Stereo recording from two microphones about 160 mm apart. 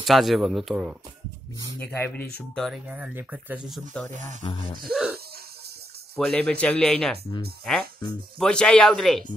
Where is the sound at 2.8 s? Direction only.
10° right (ahead or behind).